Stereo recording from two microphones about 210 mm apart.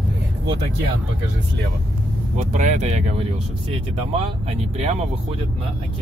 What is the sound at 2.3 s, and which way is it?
Speech, 35° right (ahead or behind).